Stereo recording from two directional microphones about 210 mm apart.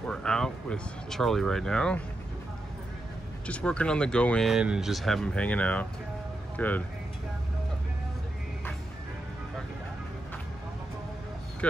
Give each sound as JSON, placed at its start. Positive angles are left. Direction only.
{"t": 0.0, "sound": "speech", "side_deg": 5}
{"t": 3.4, "sound": "speech", "side_deg": 5}